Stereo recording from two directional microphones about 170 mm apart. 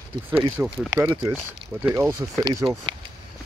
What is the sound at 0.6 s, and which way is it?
Speech, 10° right (ahead or behind).